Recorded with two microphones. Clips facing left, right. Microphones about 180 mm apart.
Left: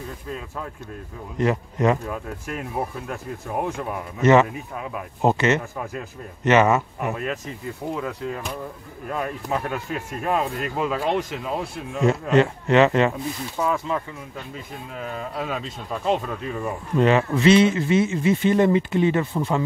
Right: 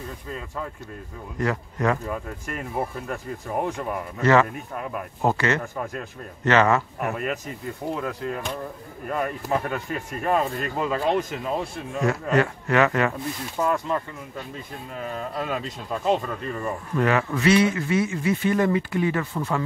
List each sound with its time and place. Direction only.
1.4 s a man's voice: 20° left (ahead or behind)
2.0 s speech: centre (ahead or behind)
4.2 s a man's voice: 20° left (ahead or behind)
7.9 s speech: centre (ahead or behind)
12.0 s a man's voice: 25° left (ahead or behind)
13.6 s speech: centre (ahead or behind)
16.9 s a man's voice: 25° left (ahead or behind)